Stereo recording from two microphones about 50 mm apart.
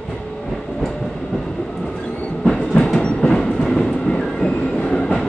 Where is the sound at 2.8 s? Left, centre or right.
Centre.